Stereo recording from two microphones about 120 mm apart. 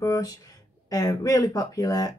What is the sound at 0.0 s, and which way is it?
Speech, 30° left (ahead or behind).